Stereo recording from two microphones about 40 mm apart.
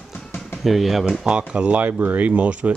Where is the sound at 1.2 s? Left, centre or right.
Right.